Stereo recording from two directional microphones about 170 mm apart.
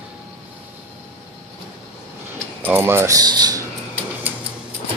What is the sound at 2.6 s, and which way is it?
Speech, 15° right (ahead or behind).